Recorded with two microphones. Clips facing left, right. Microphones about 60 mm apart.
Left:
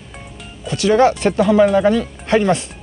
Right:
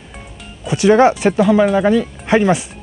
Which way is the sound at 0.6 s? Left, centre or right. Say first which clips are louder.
Right 3 dB; centre.